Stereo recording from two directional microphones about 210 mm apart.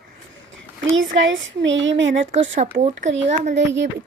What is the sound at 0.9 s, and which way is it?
Speech, 65° right (ahead or behind).